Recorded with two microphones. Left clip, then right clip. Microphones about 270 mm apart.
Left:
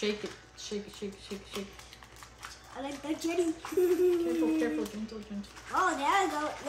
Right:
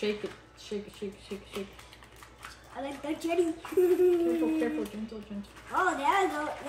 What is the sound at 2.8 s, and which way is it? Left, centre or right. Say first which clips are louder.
A woman's voice: right 1 dB; centre.